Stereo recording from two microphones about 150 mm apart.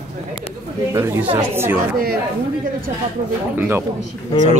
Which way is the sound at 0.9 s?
15° right (ahead or behind).